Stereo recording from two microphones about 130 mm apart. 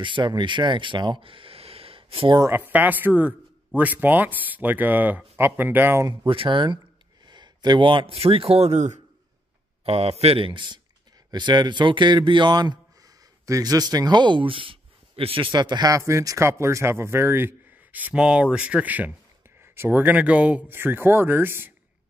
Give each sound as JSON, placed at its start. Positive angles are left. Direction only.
{"t": 0.0, "sound": "speech", "side_deg": -40}
{"t": 2.5, "sound": "a man's voice", "side_deg": -15}
{"t": 6.0, "sound": "speech", "side_deg": -40}
{"t": 9.8, "sound": "a man's voice", "side_deg": -50}